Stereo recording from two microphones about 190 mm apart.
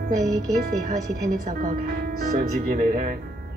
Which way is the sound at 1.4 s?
40° right (ahead or behind).